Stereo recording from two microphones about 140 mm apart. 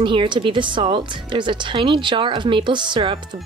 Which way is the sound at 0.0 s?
35° right (ahead or behind).